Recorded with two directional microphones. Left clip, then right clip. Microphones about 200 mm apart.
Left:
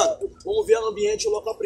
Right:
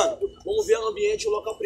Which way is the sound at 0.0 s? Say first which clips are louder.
Left 2 dB; 5° left (ahead or behind).